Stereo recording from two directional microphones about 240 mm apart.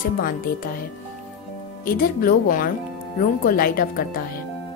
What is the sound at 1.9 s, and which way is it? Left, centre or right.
Speech, left.